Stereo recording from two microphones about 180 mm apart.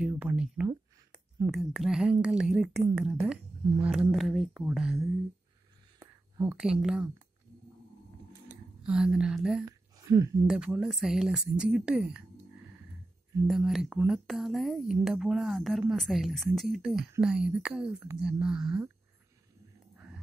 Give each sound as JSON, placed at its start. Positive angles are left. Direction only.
{"t": 0.0, "sound": "speech", "side_deg": -10}
{"t": 6.5, "sound": "speech", "side_deg": -5}
{"t": 8.5, "sound": "speech", "side_deg": -5}
{"t": 9.7, "sound": "a sound", "side_deg": -20}
{"t": 10.4, "sound": "speech", "side_deg": -5}
{"t": 13.5, "sound": "speech", "side_deg": 0}